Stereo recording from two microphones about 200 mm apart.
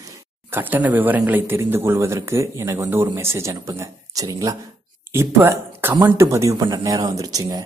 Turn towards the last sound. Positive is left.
turn(degrees=-20)  # may be behind; listen again after turning